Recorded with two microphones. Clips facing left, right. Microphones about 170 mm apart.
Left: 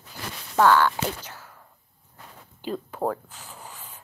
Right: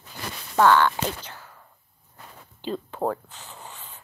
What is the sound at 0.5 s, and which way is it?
Speech, 10° left (ahead or behind).